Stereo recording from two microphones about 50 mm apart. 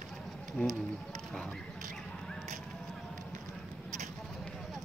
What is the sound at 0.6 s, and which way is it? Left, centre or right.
Speech, left.